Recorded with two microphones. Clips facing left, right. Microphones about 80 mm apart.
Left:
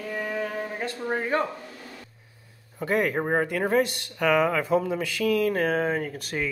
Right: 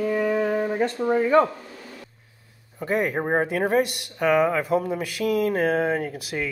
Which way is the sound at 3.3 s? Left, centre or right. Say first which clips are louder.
Right 5 dB; right.